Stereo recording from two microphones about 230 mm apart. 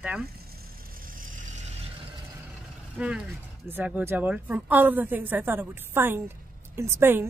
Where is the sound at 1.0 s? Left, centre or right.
Right.